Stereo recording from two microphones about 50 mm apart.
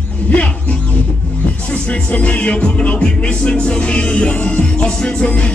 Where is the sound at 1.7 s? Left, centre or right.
Left.